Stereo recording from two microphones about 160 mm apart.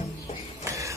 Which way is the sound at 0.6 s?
20° right (ahead or behind).